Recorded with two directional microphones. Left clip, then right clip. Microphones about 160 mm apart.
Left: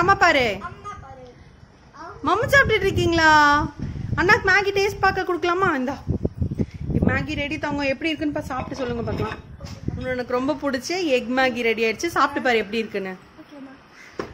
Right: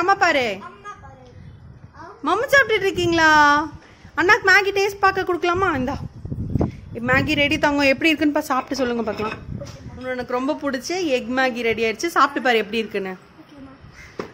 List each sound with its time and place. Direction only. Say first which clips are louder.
0.0 s a woman's voice: left 1 dB; 10° right (ahead or behind)
2.2 s a woman's voice: right 1 dB; 10° right (ahead or behind)
7.1 s a woman's voice: right 9 dB; 20° right (ahead or behind)
9.9 s a woman's voice: even; 10° right (ahead or behind)